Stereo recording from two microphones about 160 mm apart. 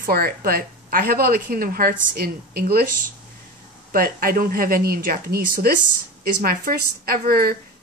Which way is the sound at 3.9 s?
65° right (ahead or behind).